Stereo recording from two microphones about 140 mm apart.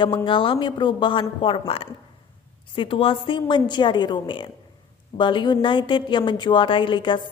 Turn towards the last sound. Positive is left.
turn(degrees=35)  # may be behind; listen again after turning